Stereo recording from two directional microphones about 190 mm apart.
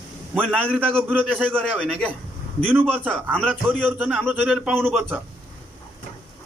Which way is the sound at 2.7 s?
10° right (ahead or behind).